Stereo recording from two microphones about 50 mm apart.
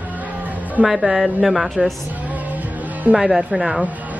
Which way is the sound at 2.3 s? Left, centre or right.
Right.